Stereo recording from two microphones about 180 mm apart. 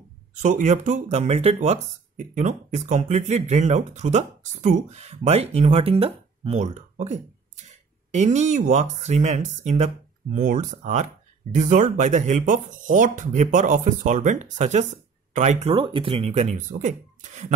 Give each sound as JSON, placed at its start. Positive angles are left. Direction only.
{"t": 0.4, "sound": "speech", "side_deg": -40}